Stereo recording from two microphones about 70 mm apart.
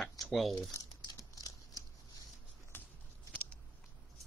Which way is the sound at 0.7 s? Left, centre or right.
Left.